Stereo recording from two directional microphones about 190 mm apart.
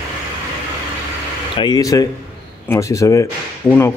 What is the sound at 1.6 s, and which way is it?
A man's voice, 20° left (ahead or behind).